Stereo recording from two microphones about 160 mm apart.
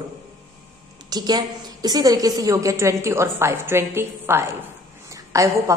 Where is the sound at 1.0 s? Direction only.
25° right (ahead or behind).